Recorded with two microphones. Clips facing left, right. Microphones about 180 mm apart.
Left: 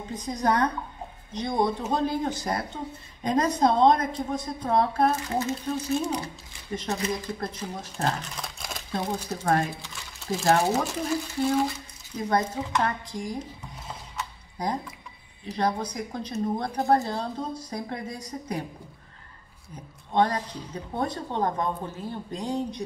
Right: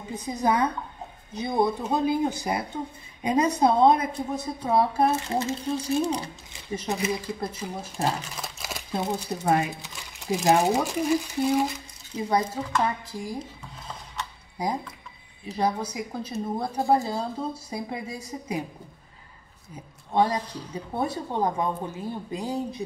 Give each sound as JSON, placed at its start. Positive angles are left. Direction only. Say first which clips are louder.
{"t": 0.1, "sound": "a woman's voice", "louder": "right 1 dB", "side_deg": -5}
{"t": 5.1, "sound": "speech", "louder": "right 1 dB", "side_deg": -25}
{"t": 6.7, "sound": "a woman's voice", "louder": "right 1 dB", "side_deg": -10}
{"t": 8.9, "sound": "a woman's voice", "louder": "right 1 dB", "side_deg": -15}
{"t": 14.6, "sound": "a woman's voice", "louder": "right 1 dB", "side_deg": -10}
{"t": 19.7, "sound": "a woman's voice", "louder": "even", "side_deg": -10}